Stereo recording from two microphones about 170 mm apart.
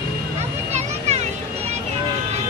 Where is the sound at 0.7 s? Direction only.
40° right (ahead or behind).